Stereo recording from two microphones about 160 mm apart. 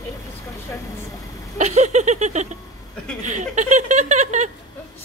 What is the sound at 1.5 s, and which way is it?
A woman's voice, 45° right (ahead or behind).